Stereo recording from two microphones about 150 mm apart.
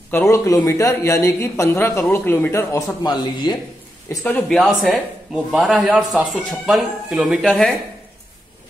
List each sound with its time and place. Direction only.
0.1 s speech: 15° left (ahead or behind)
4.2 s speech: 5° left (ahead or behind)